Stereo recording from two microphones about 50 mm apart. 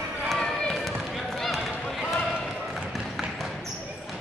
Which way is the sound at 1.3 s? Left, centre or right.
Centre.